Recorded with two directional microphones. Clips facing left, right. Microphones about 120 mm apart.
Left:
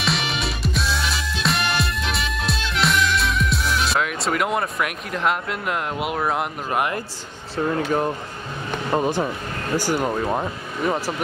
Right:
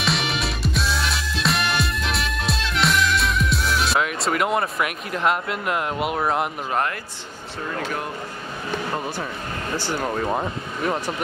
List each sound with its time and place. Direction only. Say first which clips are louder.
0.0 s music: even; centre (ahead or behind)
7.5 s speech: left 7 dB; 30° left (ahead or behind)
8.9 s speech: left 7 dB; 20° left (ahead or behind)
9.8 s speech: left 3 dB; 10° left (ahead or behind)